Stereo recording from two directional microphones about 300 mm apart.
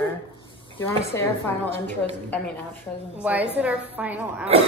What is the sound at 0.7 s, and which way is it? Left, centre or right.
A woman's voice, centre.